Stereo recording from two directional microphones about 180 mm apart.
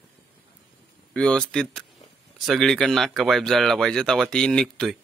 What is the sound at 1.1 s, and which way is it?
A man's voice, 5° left (ahead or behind).